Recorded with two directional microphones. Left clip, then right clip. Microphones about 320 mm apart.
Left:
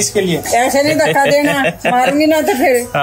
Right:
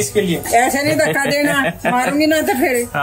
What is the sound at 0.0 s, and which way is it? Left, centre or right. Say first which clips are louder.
Speech: left 2 dB; centre.